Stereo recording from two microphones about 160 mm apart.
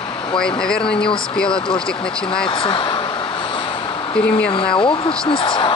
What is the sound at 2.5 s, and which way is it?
Speech, 30° left (ahead or behind).